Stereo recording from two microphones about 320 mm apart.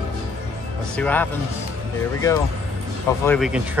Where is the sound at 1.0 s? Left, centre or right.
Centre.